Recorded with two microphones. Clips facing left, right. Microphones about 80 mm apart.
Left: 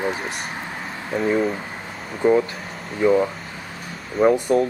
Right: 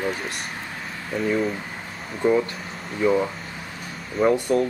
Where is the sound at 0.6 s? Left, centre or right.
Left.